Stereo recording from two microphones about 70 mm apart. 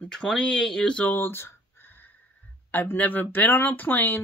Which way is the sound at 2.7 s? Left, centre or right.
Left.